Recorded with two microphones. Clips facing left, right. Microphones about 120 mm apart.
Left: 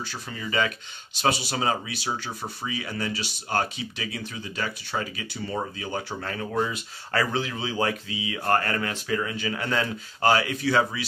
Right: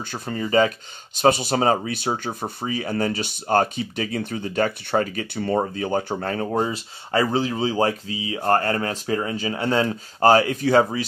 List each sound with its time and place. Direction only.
0.1 s speech: 45° right (ahead or behind)
1.2 s speech: 50° right (ahead or behind); by 9.9 s 30° right (ahead or behind)
10.2 s speech: 40° right (ahead or behind)